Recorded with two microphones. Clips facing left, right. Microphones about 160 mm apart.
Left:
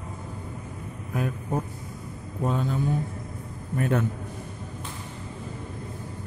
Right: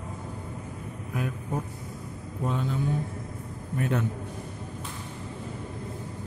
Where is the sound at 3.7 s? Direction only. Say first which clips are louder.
Left 3 dB; 50° left (ahead or behind).